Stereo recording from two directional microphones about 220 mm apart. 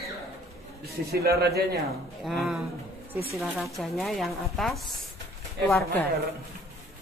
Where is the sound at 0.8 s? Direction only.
45° right (ahead or behind).